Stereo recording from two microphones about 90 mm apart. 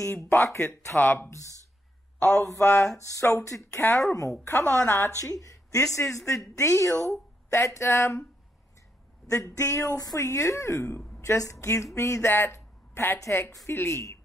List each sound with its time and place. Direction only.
0.0 s speech: 30° left (ahead or behind)
1.3 s a woman's voice: 35° left (ahead or behind)
2.1 s a man's voice: 10° left (ahead or behind)
2.6 s speech: 25° left (ahead or behind)
3.0 s a woman's voice: 35° left (ahead or behind)
9.3 s a woman's voice: 35° left (ahead or behind)